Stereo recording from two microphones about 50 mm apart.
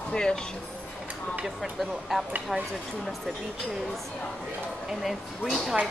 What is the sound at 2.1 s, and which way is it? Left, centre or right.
Speech, centre.